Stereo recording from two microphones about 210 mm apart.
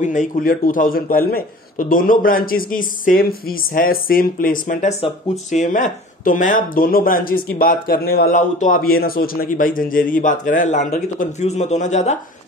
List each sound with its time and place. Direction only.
0.0 s a man's voice: 35° left (ahead or behind)